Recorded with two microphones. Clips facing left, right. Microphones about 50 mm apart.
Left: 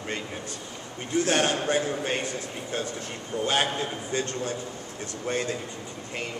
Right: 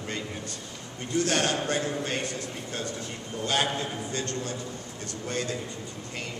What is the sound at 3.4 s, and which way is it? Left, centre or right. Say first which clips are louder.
A man's voice: left 1 dB; centre.